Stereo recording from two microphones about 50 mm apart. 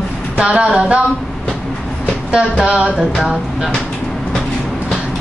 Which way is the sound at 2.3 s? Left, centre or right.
Right.